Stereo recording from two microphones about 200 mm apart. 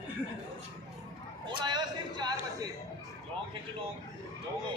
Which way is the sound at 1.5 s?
20° right (ahead or behind).